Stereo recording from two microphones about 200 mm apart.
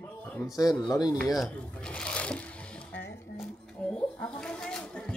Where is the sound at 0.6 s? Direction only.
15° left (ahead or behind).